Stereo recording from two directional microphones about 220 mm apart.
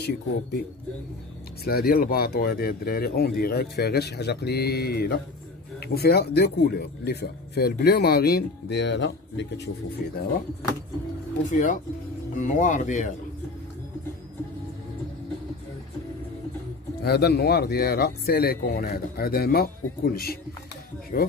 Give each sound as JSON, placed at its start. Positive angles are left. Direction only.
{"t": 1.6, "sound": "speech", "side_deg": 45}
{"t": 10.0, "sound": "speech", "side_deg": 45}
{"t": 11.5, "sound": "speech", "side_deg": 35}
{"t": 17.0, "sound": "speech", "side_deg": 45}